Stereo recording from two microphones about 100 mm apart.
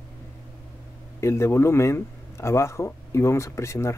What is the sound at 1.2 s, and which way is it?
Speech, 25° left (ahead or behind).